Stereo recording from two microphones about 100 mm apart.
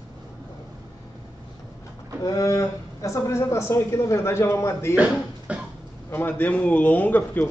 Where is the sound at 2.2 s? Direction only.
35° left (ahead or behind).